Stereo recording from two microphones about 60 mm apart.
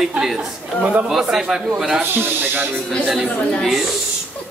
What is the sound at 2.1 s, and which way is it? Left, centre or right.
Speech, right.